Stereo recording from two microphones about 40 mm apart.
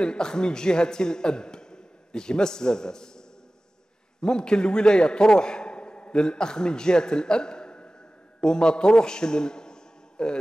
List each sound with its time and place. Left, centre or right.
0.0 s a man's voice: left